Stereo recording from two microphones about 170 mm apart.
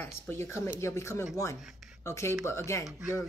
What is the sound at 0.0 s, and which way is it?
Speech, 15° left (ahead or behind).